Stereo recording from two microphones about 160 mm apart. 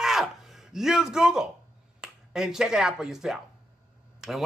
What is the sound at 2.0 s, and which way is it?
Speech, 5° right (ahead or behind).